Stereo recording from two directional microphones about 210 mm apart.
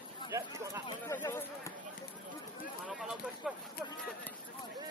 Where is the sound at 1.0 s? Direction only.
10° left (ahead or behind).